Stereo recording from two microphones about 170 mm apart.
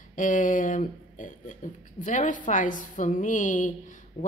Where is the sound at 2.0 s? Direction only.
50° left (ahead or behind).